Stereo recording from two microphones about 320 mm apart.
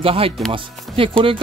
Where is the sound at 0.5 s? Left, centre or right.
Centre.